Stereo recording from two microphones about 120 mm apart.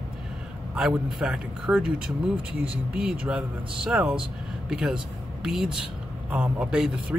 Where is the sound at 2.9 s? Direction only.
10° right (ahead or behind).